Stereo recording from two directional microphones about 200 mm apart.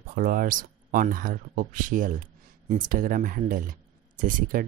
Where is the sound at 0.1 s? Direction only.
45° right (ahead or behind).